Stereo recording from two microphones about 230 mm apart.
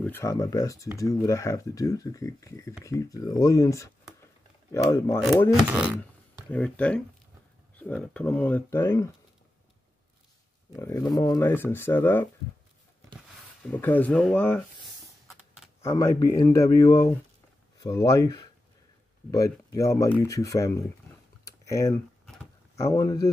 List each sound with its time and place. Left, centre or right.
0.0 s speech: centre
5.2 s speech: centre
8.1 s speech: centre
10.8 s speech: centre
13.7 s speech: centre
15.2 s a sound: centre
15.8 s speech: centre
22.2 s a sound: centre